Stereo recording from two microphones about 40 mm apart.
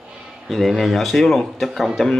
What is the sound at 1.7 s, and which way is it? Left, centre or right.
Speech, centre.